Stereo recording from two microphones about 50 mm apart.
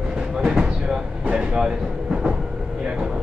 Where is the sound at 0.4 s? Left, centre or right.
Centre.